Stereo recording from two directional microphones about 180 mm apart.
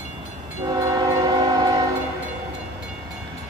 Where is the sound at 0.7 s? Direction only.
20° right (ahead or behind).